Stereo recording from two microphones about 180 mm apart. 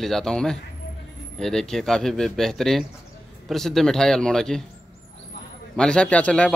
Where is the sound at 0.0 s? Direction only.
Centre (ahead or behind).